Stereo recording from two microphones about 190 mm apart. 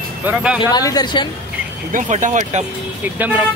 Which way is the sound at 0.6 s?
20° left (ahead or behind).